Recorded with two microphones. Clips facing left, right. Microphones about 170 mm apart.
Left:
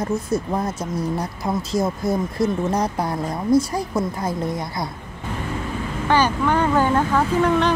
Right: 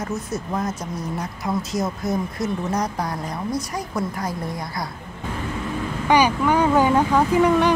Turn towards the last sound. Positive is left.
turn(degrees=-10)  # may be behind; listen again after turning